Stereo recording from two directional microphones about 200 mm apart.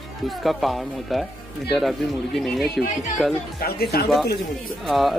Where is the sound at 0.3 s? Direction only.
Centre (ahead or behind).